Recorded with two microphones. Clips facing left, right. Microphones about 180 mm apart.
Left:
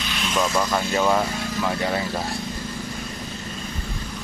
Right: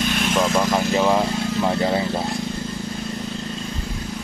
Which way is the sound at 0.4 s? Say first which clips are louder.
Right 2 dB; 20° right (ahead or behind).